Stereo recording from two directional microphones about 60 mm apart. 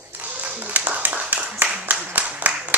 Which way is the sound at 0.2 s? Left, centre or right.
Right.